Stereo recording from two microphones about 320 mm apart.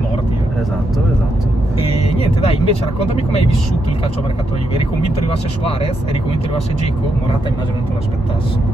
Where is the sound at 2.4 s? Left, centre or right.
Centre.